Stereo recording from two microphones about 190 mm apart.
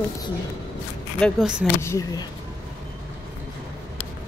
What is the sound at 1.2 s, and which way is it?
Speech, 5° right (ahead or behind).